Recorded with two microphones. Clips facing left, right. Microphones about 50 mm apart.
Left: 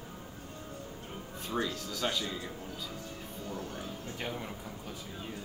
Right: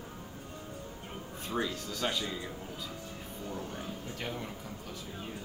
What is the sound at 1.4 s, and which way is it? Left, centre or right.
Speech, centre.